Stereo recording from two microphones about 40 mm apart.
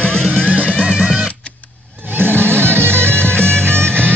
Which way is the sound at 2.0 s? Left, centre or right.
Right.